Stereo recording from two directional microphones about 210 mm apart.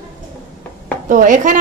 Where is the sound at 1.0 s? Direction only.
40° right (ahead or behind).